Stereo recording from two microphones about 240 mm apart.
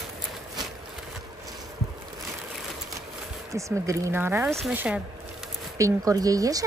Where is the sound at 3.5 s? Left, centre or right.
Centre.